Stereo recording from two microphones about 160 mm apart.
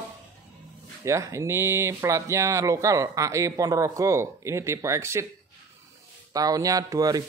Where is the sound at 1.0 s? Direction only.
20° right (ahead or behind).